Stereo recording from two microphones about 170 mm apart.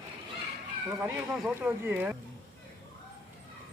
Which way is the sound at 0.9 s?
5° right (ahead or behind).